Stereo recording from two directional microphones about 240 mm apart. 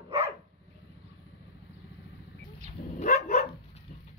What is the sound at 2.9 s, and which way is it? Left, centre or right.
Dog, left.